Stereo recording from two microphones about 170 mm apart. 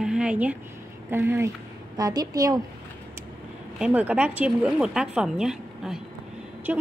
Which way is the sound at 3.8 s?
10° right (ahead or behind).